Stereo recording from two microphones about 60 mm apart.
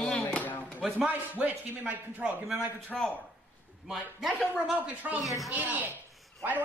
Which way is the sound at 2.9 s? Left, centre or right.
Centre.